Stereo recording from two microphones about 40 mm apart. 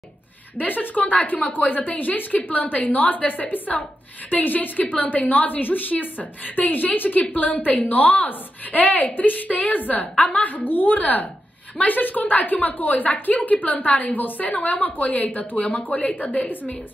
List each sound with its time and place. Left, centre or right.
0.6 s a woman's voice: left
10.5 s a woman's voice: left